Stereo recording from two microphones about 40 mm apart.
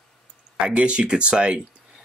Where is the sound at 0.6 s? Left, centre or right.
Right.